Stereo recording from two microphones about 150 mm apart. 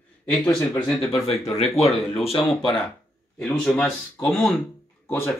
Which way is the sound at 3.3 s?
10° left (ahead or behind).